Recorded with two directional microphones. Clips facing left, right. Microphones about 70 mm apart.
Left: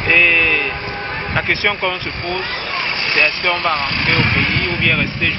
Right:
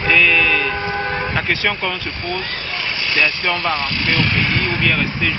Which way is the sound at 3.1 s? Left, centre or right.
Centre.